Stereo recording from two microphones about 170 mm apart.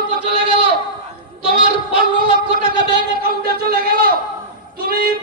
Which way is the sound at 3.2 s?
60° right (ahead or behind).